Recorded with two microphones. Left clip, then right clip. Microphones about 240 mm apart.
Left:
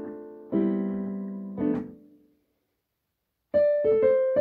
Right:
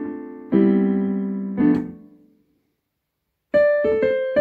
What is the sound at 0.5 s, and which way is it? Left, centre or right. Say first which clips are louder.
Keyboard: right 9 dB; right.